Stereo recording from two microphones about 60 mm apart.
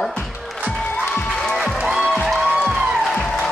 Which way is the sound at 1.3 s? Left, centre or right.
Centre.